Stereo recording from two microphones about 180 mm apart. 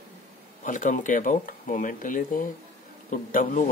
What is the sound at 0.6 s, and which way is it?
Speech, 45° left (ahead or behind).